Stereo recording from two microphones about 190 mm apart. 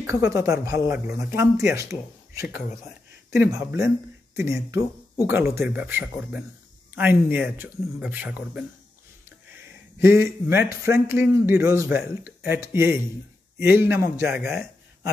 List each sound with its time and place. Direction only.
0.0 s speech: 15° right (ahead or behind)
2.4 s speech: 50° left (ahead or behind)
3.3 s speech: 15° right (ahead or behind)
14.2 s speech: centre (ahead or behind)